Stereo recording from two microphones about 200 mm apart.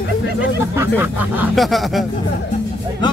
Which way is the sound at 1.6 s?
Centre (ahead or behind).